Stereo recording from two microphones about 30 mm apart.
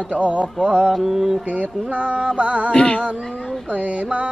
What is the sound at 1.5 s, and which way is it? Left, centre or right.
Music, right.